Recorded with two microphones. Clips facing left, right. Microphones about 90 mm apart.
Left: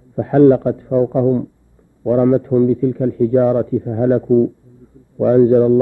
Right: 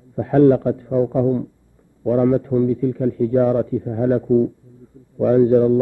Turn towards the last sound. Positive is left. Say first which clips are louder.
# left 3 dB
turn(degrees=40)  # may be behind; listen again after turning